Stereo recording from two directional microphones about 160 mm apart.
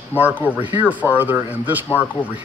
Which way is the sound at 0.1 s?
10° right (ahead or behind).